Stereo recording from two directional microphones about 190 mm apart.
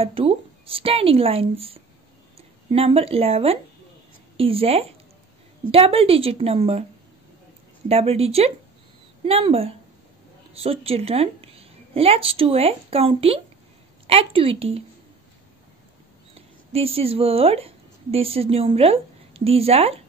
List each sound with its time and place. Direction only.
0.0 s speech: 30° right (ahead or behind)
7.9 s a woman's voice: 30° right (ahead or behind)
16.3 s a woman's voice: 30° right (ahead or behind)